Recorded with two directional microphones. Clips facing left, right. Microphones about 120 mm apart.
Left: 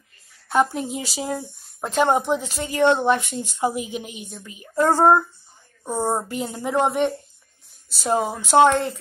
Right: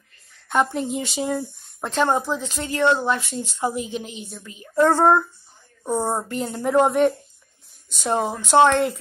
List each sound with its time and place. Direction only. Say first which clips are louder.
0.5 s speech: left 1 dB; 5° left (ahead or behind); by 2.4 s 20° left (ahead or behind)
2.4 s speech: even; 5° left (ahead or behind)
2.7 s a woman's voice: left 2 dB; 20° left (ahead or behind)
6.3 s speech: right 4 dB; 5° left (ahead or behind)